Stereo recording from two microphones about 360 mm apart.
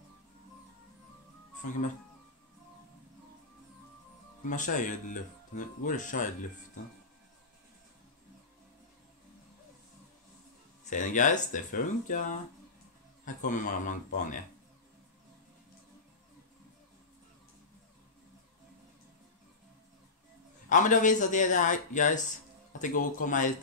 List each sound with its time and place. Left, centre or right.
4.5 s speech: left
10.9 s speech: left
20.6 s speech: left